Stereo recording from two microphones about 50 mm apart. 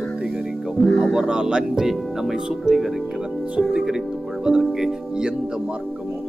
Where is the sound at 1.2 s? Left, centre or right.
Centre.